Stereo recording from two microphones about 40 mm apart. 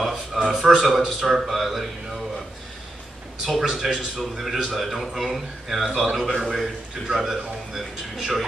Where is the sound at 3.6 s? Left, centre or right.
Centre.